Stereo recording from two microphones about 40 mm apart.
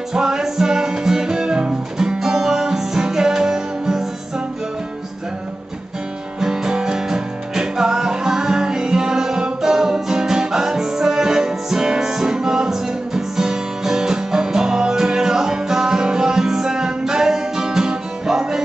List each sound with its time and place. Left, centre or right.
0.1 s music: centre
6.4 s music: centre